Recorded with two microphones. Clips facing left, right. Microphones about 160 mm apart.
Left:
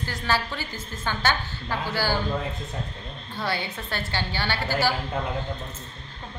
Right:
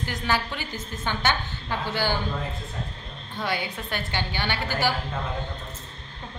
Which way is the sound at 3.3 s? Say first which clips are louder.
Even; 15° right (ahead or behind).